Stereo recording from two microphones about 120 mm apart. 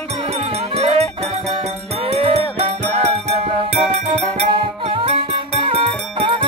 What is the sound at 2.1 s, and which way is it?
Music, 65° right (ahead or behind).